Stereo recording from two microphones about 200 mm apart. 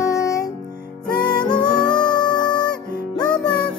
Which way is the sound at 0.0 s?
15° left (ahead or behind).